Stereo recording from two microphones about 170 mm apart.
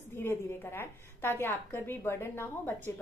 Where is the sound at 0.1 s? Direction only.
15° left (ahead or behind).